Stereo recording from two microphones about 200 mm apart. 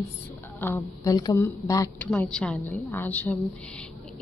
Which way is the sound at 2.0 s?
Centre (ahead or behind).